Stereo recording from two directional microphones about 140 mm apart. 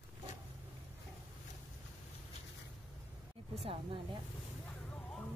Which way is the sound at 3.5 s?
40° right (ahead or behind).